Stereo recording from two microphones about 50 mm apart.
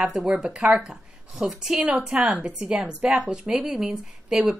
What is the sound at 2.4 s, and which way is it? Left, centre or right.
A woman's voice, right.